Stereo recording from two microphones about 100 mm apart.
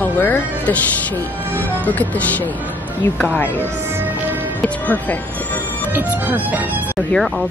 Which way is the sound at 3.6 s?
20° right (ahead or behind).